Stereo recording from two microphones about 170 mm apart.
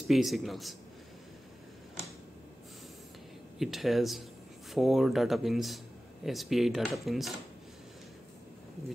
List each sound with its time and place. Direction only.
0.1 s speech: centre (ahead or behind)
3.5 s speech: centre (ahead or behind)